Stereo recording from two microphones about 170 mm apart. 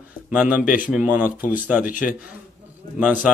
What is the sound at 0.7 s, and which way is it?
A man's voice, 10° right (ahead or behind).